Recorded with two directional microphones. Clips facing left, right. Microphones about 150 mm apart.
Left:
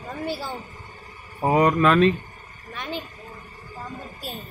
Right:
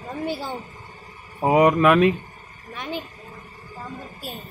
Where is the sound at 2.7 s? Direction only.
10° right (ahead or behind).